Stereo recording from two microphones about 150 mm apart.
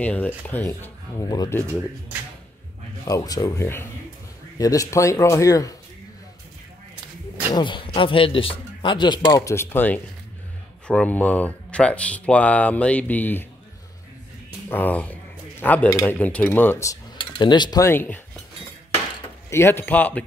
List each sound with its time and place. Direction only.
0.0 s speech: 10° left (ahead or behind)
1.3 s speech: 25° left (ahead or behind)
3.1 s speech: 20° left (ahead or behind)
7.5 s speech: 35° left (ahead or behind); by 13.5 s 15° left (ahead or behind)
14.7 s speech: 10° left (ahead or behind)
17.2 s speech: 30° left (ahead or behind); by 18.2 s 15° left (ahead or behind)
19.5 s speech: 15° left (ahead or behind)